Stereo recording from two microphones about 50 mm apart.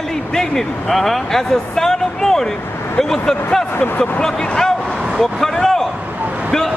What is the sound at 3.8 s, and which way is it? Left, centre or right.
Speech, left.